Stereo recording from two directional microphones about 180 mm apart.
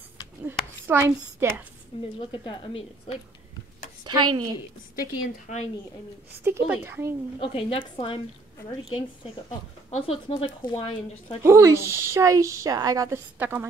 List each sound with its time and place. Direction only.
0.5 s speech: 10° right (ahead or behind)
2.1 s speech: 30° left (ahead or behind)
4.0 s a woman's voice: 25° right (ahead or behind)
5.5 s a woman's voice: 45° left (ahead or behind)
6.4 s a woman's voice: 15° right (ahead or behind)
7.3 s a woman's voice: 30° left (ahead or behind)
9.8 s speech: 35° left (ahead or behind)
11.4 s a woman's voice: 15° right (ahead or behind)